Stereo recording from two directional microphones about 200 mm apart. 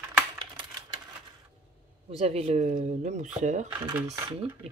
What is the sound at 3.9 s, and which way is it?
Speech, 15° right (ahead or behind).